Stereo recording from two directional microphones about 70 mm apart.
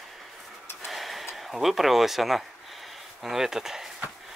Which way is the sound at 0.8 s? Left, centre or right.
Centre.